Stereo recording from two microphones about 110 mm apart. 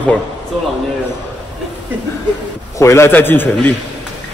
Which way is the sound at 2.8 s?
25° left (ahead or behind).